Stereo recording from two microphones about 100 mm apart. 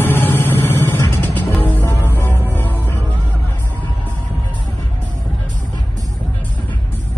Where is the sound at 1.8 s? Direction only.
25° left (ahead or behind).